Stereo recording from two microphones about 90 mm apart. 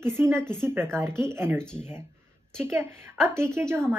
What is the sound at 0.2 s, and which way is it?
A woman's voice, 30° right (ahead or behind).